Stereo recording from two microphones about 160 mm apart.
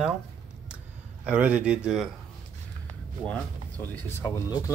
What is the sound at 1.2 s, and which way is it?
Speech, 10° right (ahead or behind).